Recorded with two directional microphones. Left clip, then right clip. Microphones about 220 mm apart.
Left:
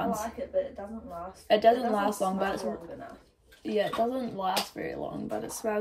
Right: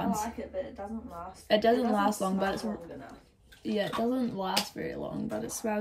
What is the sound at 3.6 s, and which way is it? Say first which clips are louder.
Speech: left 3 dB; 15° right (ahead or behind).